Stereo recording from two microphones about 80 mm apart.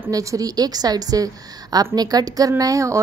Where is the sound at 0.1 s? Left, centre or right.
Right.